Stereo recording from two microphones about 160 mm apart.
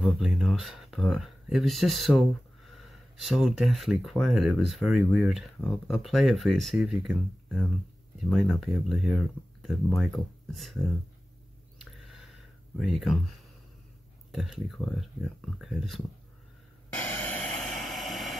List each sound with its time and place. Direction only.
0.0 s speech: centre (ahead or behind)
12.7 s speech: centre (ahead or behind)
14.3 s speech: centre (ahead or behind)
16.9 s a sound: 10° left (ahead or behind)